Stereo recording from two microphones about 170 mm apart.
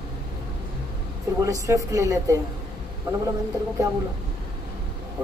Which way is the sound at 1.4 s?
20° right (ahead or behind).